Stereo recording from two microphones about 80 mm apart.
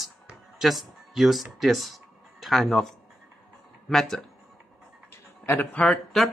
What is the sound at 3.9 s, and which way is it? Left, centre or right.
Speech, centre.